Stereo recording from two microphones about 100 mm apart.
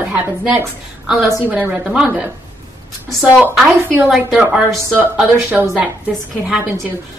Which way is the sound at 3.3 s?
10° right (ahead or behind).